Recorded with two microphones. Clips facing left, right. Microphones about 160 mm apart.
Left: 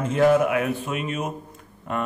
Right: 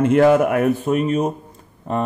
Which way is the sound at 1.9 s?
30° right (ahead or behind).